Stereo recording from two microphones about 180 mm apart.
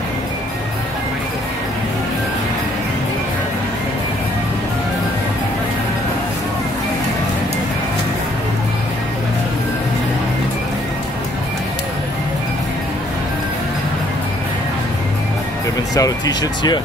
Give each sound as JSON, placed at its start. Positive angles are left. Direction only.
{"t": 15.9, "sound": "speech", "side_deg": 20}